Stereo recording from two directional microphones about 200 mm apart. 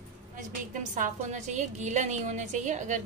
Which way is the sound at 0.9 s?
40° right (ahead or behind).